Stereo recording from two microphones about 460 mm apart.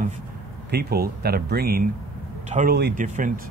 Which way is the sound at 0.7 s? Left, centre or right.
Right.